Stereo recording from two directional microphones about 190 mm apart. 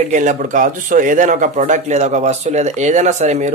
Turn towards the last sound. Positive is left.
turn(degrees=-40)  # may be behind; listen again after turning